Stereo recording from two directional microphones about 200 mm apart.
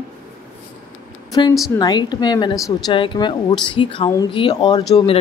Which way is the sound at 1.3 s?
20° left (ahead or behind).